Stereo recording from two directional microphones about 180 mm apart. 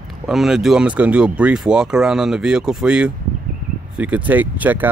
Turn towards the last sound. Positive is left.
turn(degrees=-10)  # may be behind; listen again after turning